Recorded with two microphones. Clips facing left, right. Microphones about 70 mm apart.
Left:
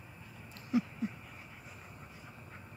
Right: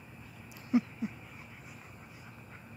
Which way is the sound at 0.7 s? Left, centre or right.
Right.